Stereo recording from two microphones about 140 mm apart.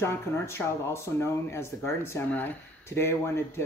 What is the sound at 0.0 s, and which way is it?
Speech, 20° left (ahead or behind).